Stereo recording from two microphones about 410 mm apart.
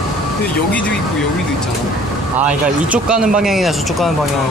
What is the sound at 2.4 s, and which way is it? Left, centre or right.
Speech, centre.